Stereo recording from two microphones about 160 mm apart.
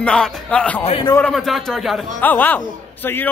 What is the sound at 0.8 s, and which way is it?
Speech, 35° left (ahead or behind).